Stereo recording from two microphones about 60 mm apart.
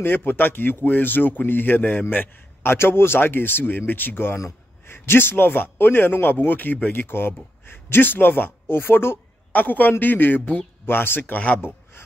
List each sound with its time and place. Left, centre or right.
0.0 s speech: left